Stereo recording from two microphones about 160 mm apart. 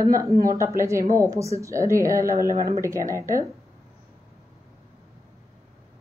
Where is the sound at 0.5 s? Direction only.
20° right (ahead or behind).